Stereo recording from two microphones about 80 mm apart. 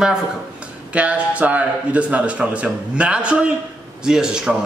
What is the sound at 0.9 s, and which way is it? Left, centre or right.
A man's voice, centre.